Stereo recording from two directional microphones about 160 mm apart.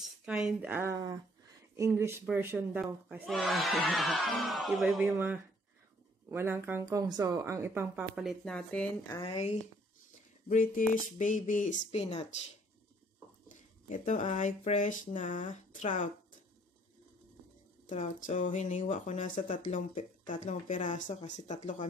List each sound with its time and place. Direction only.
0.2 s a woman's voice: 5° right (ahead or behind)
3.3 s a woman's voice: centre (ahead or behind)
8.2 s speech: centre (ahead or behind)
9.2 s speech: 40° left (ahead or behind)
10.5 s speech: 55° left (ahead or behind); by 12.3 s 40° left (ahead or behind)
13.5 s speech: 55° left (ahead or behind)
17.8 s speech: 50° left (ahead or behind)